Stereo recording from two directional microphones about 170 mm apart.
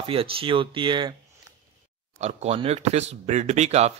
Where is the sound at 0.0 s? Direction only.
30° right (ahead or behind).